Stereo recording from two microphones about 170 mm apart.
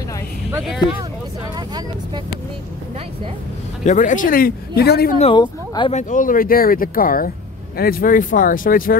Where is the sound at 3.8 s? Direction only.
45° left (ahead or behind); by 5.1 s 65° left (ahead or behind).